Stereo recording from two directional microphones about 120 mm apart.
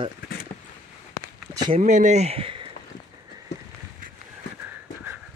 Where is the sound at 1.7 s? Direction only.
75° right (ahead or behind); by 2.7 s 50° right (ahead or behind).